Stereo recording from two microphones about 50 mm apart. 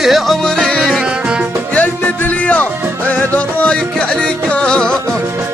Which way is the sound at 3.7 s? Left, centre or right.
Centre.